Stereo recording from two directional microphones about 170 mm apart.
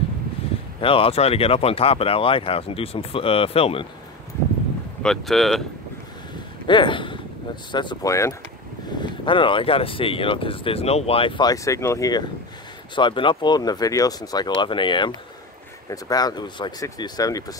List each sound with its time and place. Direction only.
0.7 s speech: 35° left (ahead or behind)
5.0 s speech: centre (ahead or behind)
6.7 s speech: 30° left (ahead or behind)
9.0 s speech: 30° left (ahead or behind)